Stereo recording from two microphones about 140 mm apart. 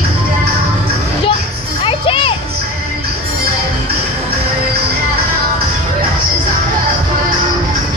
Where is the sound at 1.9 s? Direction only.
40° left (ahead or behind).